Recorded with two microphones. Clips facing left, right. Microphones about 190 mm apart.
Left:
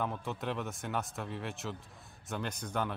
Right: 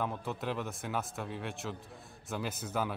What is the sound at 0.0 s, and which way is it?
Speech, centre (ahead or behind).